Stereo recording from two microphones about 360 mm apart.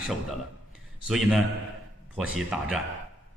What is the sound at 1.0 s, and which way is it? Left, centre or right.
Speech, centre.